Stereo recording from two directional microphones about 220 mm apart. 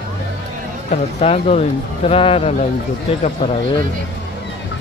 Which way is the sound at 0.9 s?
30° left (ahead or behind).